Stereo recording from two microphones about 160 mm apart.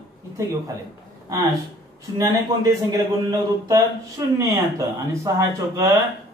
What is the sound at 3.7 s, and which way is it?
A man's voice, 20° right (ahead or behind).